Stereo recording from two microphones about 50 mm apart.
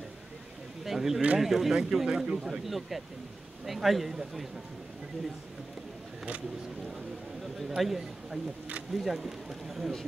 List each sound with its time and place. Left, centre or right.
0.8 s speech: centre
7.5 s speech: centre